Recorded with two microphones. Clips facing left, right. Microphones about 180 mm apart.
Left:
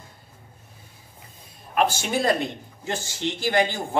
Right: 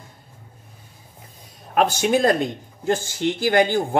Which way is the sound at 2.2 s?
45° right (ahead or behind).